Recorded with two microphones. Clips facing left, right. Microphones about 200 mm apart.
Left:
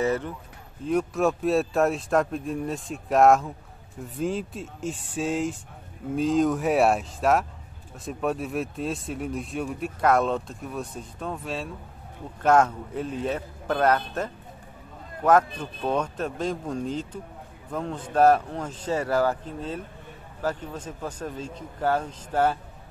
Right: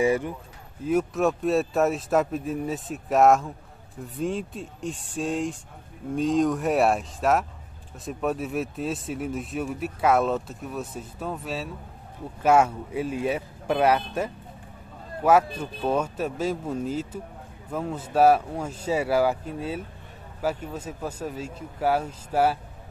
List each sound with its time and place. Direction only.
0.0 s speech: 10° right (ahead or behind)
15.5 s speech: 10° right (ahead or behind)